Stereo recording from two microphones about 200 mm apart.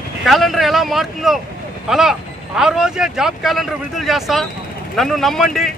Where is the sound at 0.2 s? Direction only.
Centre (ahead or behind).